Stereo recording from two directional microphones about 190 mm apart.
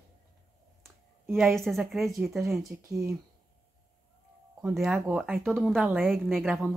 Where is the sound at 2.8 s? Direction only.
15° right (ahead or behind).